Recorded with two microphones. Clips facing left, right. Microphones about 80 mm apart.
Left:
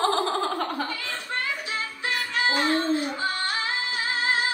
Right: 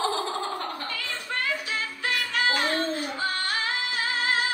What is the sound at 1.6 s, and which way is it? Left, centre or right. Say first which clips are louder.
Music: even; left.